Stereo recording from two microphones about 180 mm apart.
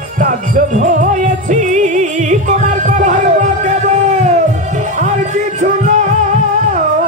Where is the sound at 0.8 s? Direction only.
50° right (ahead or behind).